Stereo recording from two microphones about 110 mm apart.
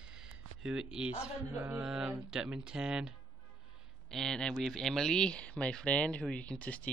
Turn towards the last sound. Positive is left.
turn(degrees=10)  # may be behind; listen again after turning